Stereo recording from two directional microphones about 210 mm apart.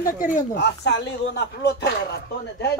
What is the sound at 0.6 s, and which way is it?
Speech, 55° left (ahead or behind).